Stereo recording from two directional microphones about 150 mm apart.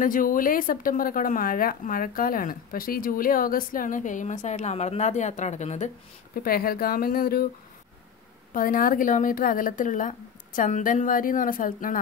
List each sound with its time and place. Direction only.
0.0 s a woman's voice: 65° left (ahead or behind)
6.4 s speech: 80° left
8.5 s a woman's voice: 65° left (ahead or behind)